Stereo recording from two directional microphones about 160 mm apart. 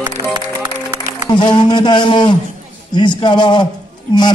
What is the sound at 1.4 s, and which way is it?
A man's voice, 30° left (ahead or behind).